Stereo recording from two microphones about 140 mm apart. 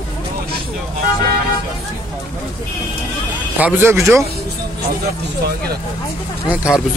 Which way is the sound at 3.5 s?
10° right (ahead or behind).